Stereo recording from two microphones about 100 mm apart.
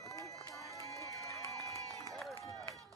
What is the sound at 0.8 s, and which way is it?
Crowd, 30° left (ahead or behind).